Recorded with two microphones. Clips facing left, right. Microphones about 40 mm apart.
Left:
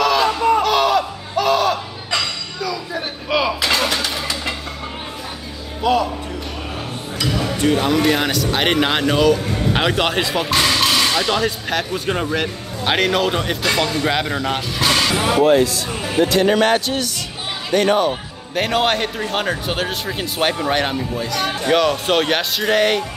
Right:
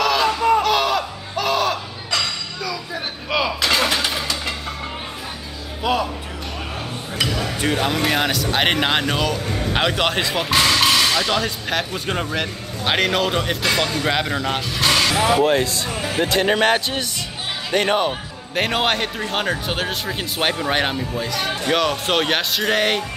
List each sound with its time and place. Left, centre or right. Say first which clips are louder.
0.0 s a sound: left 2 dB; centre
2.6 s vehicle: left 4 dB; centre
5.8 s music: left 4 dB; centre
7.6 s speech: left 4 dB; centre
15.5 s speech: left 4 dB; right
18.5 s speech: left 2 dB; centre